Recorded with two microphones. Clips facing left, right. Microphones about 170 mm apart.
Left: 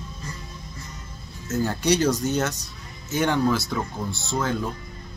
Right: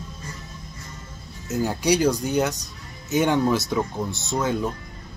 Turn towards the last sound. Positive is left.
turn(degrees=-20)  # may be behind; listen again after turning